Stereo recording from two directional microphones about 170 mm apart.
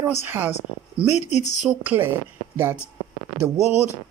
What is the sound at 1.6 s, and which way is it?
Speech, 10° right (ahead or behind).